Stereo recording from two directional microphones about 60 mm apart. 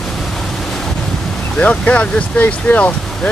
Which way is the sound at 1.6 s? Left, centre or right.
Left.